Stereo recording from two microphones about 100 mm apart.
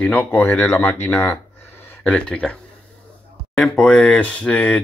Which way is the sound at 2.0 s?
10° left (ahead or behind).